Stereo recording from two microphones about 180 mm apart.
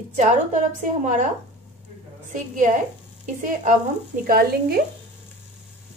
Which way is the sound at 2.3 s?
45° right (ahead or behind).